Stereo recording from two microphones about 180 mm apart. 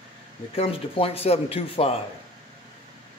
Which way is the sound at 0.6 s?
30° left (ahead or behind).